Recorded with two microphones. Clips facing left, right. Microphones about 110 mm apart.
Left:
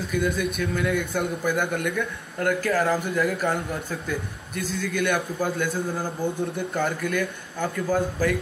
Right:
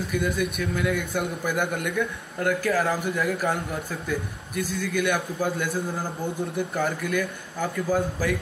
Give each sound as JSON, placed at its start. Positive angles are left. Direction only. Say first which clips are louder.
{"t": 0.1, "sound": "a man's voice", "louder": "left 2 dB", "side_deg": 0}